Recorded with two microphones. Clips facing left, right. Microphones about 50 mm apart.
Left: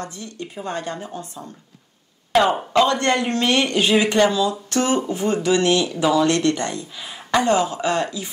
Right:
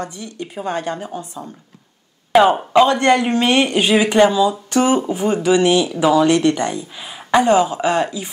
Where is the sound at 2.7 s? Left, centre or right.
Right.